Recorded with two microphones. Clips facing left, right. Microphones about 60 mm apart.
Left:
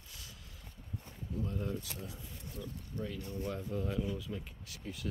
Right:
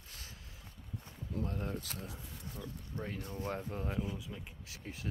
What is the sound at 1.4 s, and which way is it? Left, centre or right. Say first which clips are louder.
Speech: left 1 dB; right.